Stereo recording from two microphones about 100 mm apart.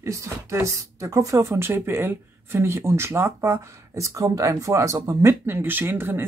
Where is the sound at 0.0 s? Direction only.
30° right (ahead or behind).